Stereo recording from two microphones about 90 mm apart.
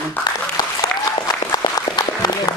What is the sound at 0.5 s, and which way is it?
Applause, 45° left (ahead or behind).